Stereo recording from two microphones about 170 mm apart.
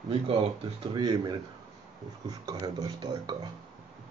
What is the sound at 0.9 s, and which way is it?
Speech, 25° right (ahead or behind).